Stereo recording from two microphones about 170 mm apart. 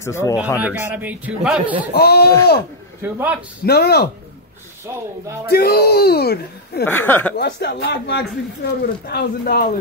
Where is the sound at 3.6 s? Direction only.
70° left (ahead or behind).